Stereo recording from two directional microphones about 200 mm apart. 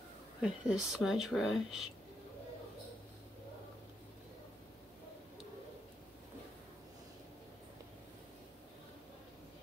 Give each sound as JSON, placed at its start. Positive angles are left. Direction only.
{"t": 0.4, "sound": "speech", "side_deg": -5}